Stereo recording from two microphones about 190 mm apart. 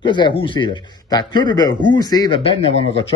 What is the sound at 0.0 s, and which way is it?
A man's voice, 25° left (ahead or behind).